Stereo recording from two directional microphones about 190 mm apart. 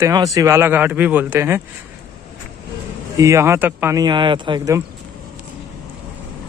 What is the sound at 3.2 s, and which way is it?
Speech, 15° right (ahead or behind).